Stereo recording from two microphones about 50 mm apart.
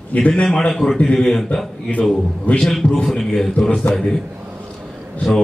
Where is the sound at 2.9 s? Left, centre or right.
Centre.